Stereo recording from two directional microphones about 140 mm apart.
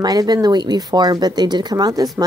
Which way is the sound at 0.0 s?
30° right (ahead or behind).